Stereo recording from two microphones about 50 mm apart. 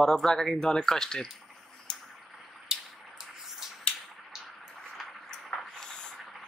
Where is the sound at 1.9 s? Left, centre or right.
Centre.